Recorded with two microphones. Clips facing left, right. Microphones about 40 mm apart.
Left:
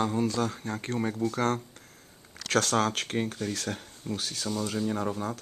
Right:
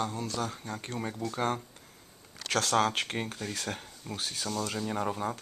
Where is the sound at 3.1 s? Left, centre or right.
Centre.